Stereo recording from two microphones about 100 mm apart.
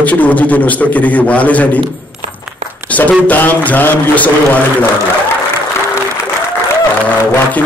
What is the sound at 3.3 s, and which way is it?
A man's voice, 15° left (ahead or behind).